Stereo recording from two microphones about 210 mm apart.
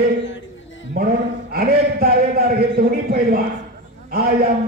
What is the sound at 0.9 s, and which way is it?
A man's voice, 45° right (ahead or behind).